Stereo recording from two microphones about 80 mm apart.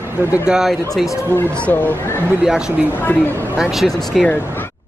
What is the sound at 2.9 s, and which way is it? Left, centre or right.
Speech, left.